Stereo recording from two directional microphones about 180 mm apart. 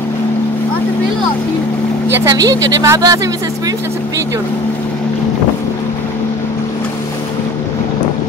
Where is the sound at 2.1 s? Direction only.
20° right (ahead or behind).